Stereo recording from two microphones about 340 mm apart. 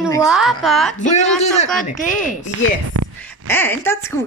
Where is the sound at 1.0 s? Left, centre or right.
Left.